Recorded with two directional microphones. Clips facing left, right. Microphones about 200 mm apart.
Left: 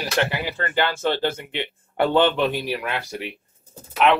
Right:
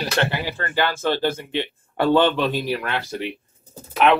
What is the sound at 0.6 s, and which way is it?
A man's voice, 20° left (ahead or behind).